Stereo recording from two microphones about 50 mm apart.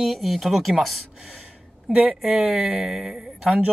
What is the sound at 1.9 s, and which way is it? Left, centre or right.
Speech, right.